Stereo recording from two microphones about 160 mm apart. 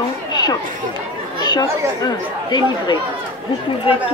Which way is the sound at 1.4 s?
25° left (ahead or behind).